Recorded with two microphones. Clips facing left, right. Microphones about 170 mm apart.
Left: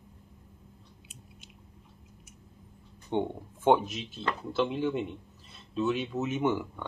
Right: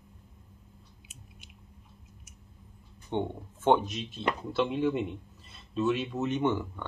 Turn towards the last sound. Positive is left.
turn(degrees=5)  # may be behind; listen again after turning